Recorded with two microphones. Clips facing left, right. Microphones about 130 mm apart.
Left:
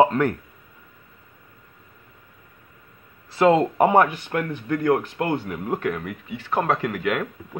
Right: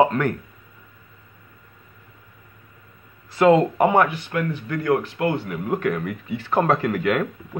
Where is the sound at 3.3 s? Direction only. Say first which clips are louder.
Right 2 dB; 30° left (ahead or behind); by 5.4 s 45° left (ahead or behind).